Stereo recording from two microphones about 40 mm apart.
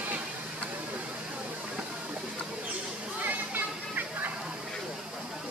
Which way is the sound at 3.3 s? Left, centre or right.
Right.